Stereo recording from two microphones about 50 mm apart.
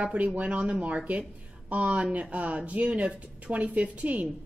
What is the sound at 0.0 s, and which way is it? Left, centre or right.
A woman's voice, right.